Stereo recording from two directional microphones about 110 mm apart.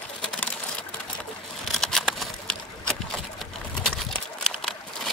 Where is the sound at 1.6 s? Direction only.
5° left (ahead or behind).